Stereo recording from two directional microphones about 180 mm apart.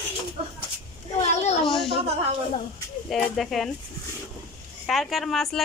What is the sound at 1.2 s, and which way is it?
Speech, 40° left (ahead or behind).